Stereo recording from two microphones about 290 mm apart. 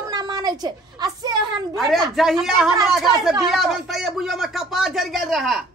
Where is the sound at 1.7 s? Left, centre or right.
Centre.